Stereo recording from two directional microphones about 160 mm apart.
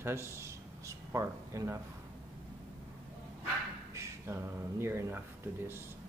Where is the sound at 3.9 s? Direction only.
15° right (ahead or behind).